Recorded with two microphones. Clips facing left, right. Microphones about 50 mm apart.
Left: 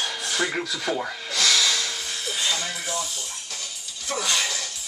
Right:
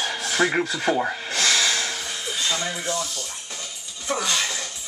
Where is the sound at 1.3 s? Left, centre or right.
Right.